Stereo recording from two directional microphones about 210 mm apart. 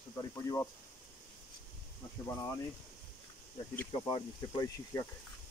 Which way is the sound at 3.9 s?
25° left (ahead or behind).